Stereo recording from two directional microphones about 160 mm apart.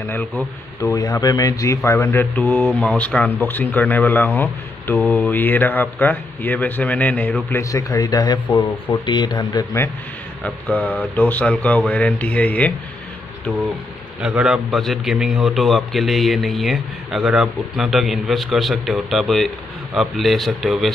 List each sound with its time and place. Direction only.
0.1 s speech: 10° left (ahead or behind)
10.4 s speech: 10° left (ahead or behind)
14.2 s a man's voice: 5° right (ahead or behind)